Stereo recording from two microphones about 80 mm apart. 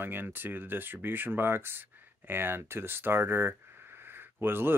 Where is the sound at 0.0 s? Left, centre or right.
Right.